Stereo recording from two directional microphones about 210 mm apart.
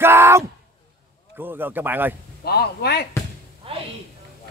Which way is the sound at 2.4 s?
50° left (ahead or behind).